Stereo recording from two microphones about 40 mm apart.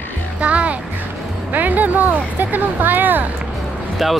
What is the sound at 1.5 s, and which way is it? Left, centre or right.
Speech, right.